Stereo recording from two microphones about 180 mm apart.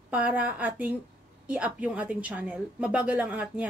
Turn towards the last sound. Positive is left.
turn(degrees=-5)  # may be behind; listen again after turning